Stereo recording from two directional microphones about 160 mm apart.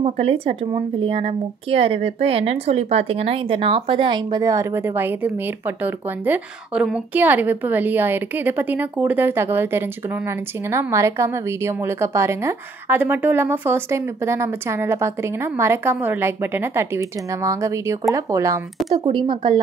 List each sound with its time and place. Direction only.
0.0 s a woman's voice: 35° right (ahead or behind); by 18.6 s 20° right (ahead or behind)
18.9 s speech: 35° right (ahead or behind)